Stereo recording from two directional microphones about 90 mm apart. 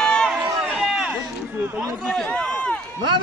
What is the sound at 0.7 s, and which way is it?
Run, 5° right (ahead or behind).